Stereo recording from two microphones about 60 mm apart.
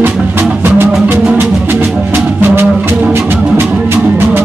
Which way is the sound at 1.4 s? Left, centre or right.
Right.